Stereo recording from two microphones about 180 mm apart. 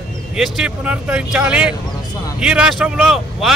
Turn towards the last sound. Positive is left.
turn(degrees=0)  # may be behind; listen again after turning